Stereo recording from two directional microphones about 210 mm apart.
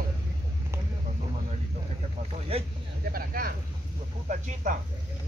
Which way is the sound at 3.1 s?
45° right (ahead or behind).